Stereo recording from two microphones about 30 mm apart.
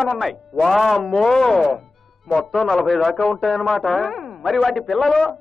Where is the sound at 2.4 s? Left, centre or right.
Centre.